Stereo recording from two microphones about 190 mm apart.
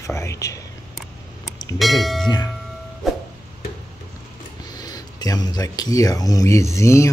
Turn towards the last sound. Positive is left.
turn(degrees=15)  # may be behind; listen again after turning